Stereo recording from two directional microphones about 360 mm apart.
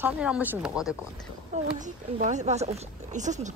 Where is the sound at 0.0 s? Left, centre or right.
Centre.